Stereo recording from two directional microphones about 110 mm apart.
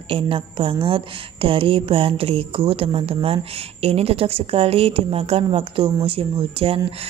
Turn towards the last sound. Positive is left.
turn(degrees=-60)  # may be behind; listen again after turning